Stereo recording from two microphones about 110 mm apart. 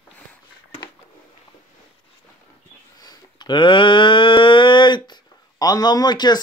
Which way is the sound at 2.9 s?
40° left (ahead or behind).